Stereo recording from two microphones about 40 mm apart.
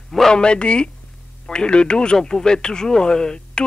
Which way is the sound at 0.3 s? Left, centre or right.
Left.